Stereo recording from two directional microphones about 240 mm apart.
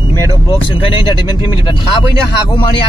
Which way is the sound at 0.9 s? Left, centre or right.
Left.